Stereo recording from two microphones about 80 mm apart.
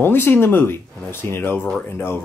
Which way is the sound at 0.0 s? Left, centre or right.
Left.